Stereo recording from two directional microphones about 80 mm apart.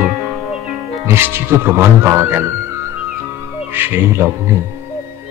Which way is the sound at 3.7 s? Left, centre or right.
Right.